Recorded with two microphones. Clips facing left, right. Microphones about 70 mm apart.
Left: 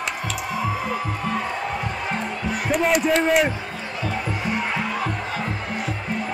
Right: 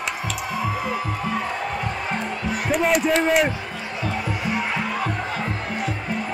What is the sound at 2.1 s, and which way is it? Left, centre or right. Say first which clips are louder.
Music: even; centre.